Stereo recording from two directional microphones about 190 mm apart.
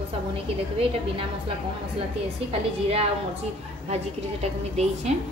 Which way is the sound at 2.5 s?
30° right (ahead or behind).